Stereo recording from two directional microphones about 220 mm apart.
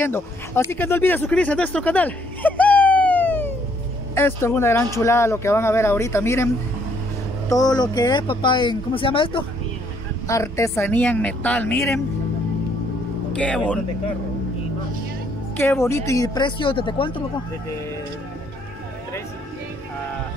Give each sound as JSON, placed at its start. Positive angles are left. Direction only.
{"t": 0.0, "sound": "speech", "side_deg": 10}
{"t": 13.3, "sound": "speech", "side_deg": 5}
{"t": 15.5, "sound": "speech", "side_deg": 10}